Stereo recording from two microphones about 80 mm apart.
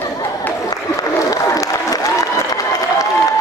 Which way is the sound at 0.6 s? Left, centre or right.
Left.